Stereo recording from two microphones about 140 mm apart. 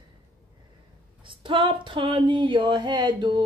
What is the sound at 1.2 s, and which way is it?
Female singing, 35° right (ahead or behind).